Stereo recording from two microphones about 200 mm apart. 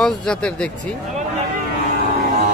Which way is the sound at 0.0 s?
5° left (ahead or behind).